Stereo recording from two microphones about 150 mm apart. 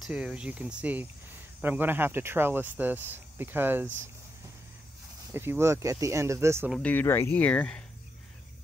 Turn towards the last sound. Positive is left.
turn(degrees=10)  # may be behind; listen again after turning